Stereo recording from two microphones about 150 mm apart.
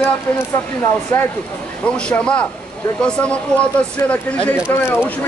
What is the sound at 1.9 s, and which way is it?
Speech, 5° left (ahead or behind).